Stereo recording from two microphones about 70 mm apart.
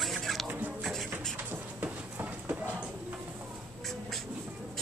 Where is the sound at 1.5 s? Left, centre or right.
Right.